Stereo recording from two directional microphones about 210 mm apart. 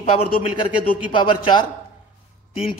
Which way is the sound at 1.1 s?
20° left (ahead or behind).